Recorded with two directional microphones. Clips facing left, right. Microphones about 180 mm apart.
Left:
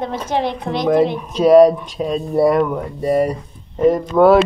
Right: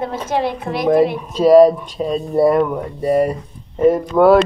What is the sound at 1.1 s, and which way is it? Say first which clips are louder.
Speech: left 1 dB; centre (ahead or behind).